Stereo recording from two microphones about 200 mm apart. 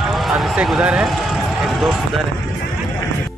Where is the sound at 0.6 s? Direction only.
5° right (ahead or behind).